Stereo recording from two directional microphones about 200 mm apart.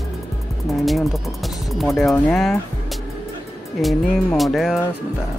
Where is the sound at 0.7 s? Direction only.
Centre (ahead or behind).